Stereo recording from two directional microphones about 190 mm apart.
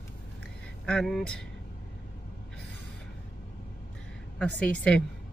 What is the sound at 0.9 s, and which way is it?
Speech, centre (ahead or behind).